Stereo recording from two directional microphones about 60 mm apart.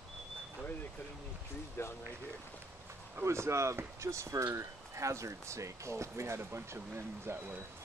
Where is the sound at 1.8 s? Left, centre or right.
Left.